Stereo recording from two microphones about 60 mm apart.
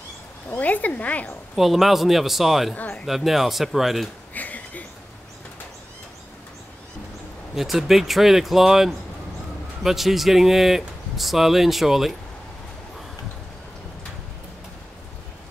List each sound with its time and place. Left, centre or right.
0.6 s speech: left
1.5 s speech: centre
2.7 s speech: left
3.1 s speech: centre
4.3 s a sound: left
7.5 s speech: centre